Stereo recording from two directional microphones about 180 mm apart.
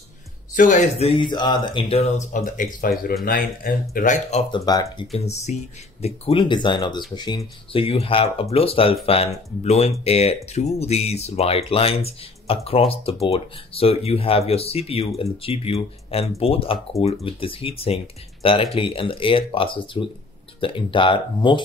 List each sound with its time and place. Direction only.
0.6 s speech: 45° left (ahead or behind)
4.6 s speech: 20° left (ahead or behind)
5.1 s speech: 35° left (ahead or behind)